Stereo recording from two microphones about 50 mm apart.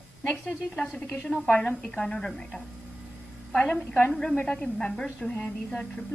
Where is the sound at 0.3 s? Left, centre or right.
Centre.